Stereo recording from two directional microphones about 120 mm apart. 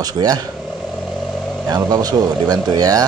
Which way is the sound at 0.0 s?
35° right (ahead or behind).